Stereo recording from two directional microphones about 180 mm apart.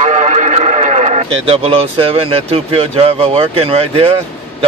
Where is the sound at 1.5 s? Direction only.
30° right (ahead or behind).